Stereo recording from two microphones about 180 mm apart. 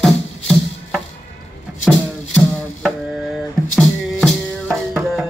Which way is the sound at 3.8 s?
Centre (ahead or behind).